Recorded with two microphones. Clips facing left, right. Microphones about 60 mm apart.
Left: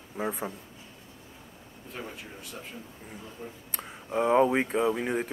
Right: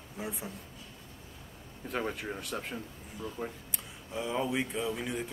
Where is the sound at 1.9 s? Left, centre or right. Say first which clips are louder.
Right 6 dB; right.